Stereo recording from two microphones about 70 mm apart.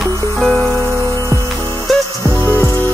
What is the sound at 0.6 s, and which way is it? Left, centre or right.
Music, right.